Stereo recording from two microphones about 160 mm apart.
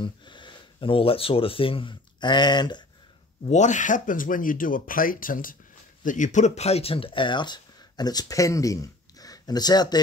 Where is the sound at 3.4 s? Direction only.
50° left (ahead or behind).